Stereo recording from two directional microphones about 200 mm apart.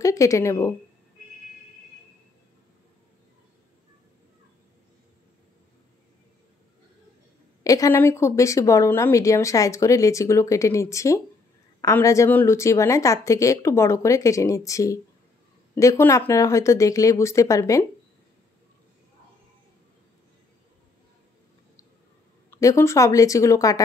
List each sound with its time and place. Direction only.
0.0 s a woman's voice: 15° left (ahead or behind)
7.6 s speech: 15° left (ahead or behind)
22.5 s speech: 15° left (ahead or behind)